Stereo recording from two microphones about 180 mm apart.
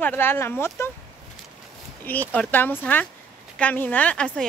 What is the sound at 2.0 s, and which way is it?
Speech, 10° left (ahead or behind).